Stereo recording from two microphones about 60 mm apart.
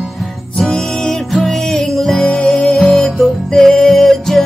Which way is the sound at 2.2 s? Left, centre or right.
Centre.